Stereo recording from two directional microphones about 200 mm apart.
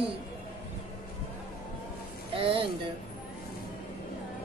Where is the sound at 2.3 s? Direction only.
25° right (ahead or behind).